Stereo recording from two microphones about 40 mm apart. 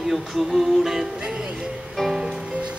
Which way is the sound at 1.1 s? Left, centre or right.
Right.